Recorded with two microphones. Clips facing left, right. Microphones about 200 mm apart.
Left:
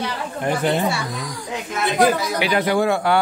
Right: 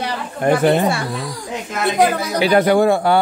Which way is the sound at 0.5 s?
55° right (ahead or behind).